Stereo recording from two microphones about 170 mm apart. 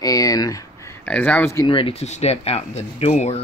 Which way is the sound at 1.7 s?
30° left (ahead or behind).